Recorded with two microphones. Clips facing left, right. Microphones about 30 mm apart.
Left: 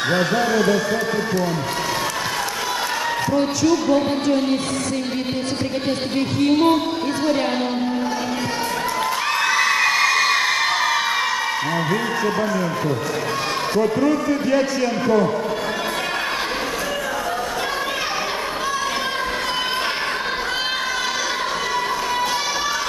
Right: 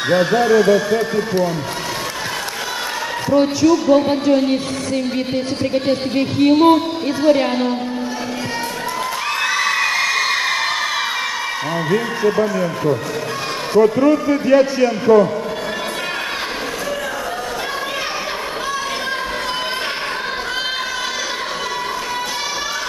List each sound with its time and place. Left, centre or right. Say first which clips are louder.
0.1 s speech: right 7 dB; centre
3.6 s speech: right 2 dB; centre
4.1 s speech: right 4 dB; centre
9.5 s children shouting: even; centre
11.9 s speech: right 3 dB; centre